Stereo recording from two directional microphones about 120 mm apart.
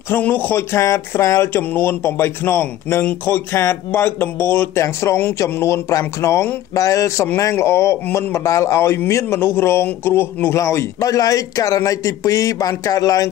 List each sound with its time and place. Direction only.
0.1 s speech: 15° left (ahead or behind)